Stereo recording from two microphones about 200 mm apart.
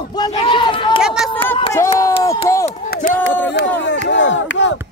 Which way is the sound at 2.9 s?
45° left (ahead or behind).